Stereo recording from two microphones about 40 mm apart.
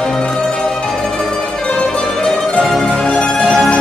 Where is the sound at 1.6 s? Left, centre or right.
Centre.